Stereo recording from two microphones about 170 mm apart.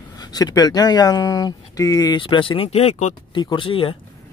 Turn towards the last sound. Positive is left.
turn(degrees=30)  # may be behind; listen again after turning